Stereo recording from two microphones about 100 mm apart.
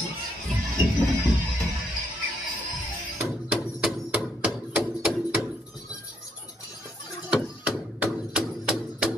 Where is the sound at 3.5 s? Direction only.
10° right (ahead or behind).